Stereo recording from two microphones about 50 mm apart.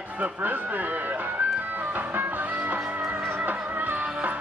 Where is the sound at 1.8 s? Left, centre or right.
Right.